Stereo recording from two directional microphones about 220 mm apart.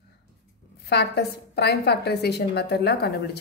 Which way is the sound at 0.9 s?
50° left (ahead or behind).